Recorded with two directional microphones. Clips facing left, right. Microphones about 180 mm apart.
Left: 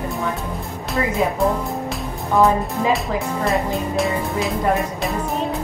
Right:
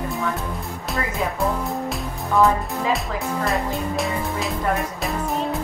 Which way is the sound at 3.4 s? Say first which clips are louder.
Left 4 dB; centre (ahead or behind).